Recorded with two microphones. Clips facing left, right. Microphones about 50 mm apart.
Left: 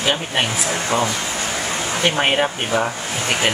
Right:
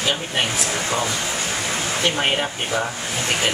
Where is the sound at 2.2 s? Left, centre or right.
Left.